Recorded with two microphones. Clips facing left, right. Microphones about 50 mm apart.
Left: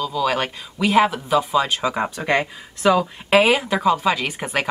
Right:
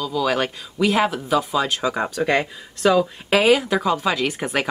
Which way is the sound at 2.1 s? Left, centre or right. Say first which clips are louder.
Right 1 dB; left.